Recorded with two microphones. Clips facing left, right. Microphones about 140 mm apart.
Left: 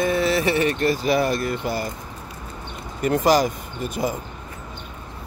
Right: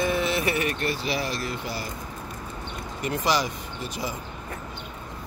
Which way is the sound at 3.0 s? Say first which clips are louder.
Left 8 dB; 45° left (ahead or behind).